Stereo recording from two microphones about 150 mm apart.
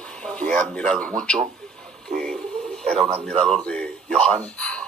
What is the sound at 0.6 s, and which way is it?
Speech, 10° left (ahead or behind).